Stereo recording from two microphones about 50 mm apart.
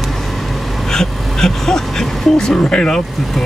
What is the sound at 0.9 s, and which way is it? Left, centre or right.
Speech, centre.